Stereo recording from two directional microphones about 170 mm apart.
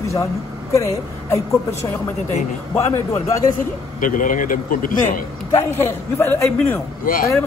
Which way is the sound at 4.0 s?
50° left (ahead or behind).